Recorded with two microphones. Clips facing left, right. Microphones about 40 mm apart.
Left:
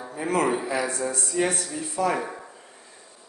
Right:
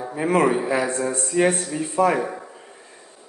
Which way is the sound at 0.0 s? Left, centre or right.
Right.